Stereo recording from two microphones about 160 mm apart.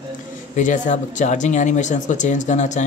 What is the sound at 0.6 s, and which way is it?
Speech, 50° left (ahead or behind).